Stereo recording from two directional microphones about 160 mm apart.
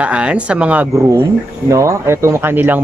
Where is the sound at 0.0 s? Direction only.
10° right (ahead or behind).